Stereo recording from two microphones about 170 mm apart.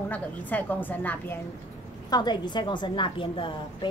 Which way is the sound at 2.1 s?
25° left (ahead or behind).